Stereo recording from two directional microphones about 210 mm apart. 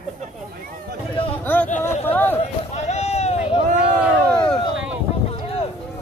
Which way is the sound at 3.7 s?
5° right (ahead or behind).